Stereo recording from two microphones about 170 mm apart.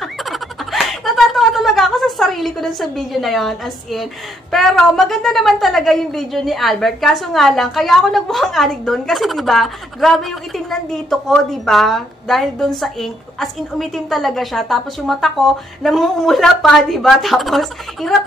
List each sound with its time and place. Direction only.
0.0 s speech: centre (ahead or behind)